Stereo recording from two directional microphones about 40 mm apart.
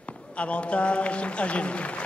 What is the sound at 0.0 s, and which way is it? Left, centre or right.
A man's voice, left.